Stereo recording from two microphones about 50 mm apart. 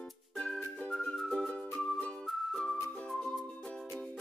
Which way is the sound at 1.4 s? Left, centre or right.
Left.